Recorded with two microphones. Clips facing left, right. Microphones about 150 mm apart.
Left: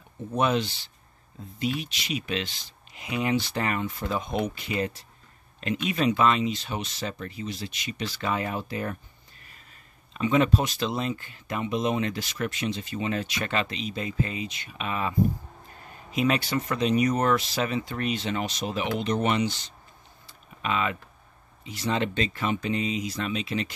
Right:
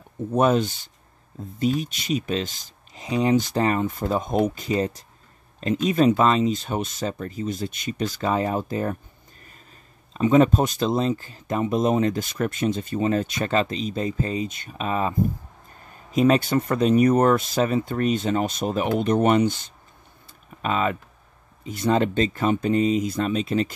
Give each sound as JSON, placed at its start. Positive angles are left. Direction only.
{"t": 0.3, "sound": "speech", "side_deg": -45}
{"t": 10.1, "sound": "speech", "side_deg": -40}
{"t": 20.6, "sound": "speech", "side_deg": -40}